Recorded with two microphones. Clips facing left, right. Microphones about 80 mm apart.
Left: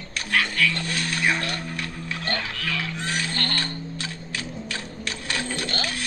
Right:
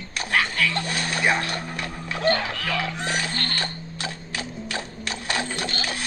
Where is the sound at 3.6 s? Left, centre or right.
Centre.